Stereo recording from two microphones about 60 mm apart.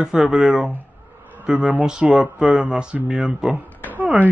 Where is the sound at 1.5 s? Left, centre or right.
Right.